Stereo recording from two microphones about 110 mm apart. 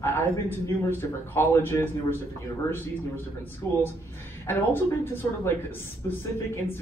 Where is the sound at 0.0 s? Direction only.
20° left (ahead or behind).